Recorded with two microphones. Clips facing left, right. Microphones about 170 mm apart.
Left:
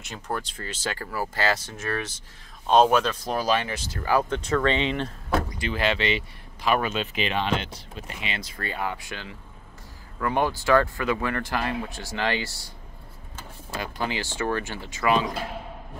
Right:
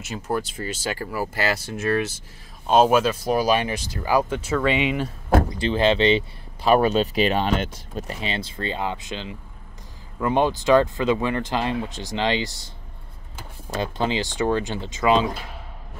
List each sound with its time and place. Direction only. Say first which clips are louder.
0.0 s speech: right 5 dB; 5° right (ahead or behind)
5.5 s speech: right 6 dB; 25° right (ahead or behind)
13.7 s speech: right 6 dB; 25° right (ahead or behind)